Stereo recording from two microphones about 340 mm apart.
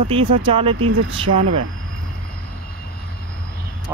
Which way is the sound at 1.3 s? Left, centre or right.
Right.